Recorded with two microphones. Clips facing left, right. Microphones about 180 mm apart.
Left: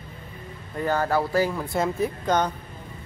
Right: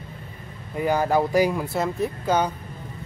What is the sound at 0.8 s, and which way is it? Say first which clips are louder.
Speech: right 2 dB; 15° right (ahead or behind).